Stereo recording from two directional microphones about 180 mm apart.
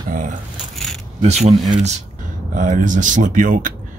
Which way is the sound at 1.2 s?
40° right (ahead or behind).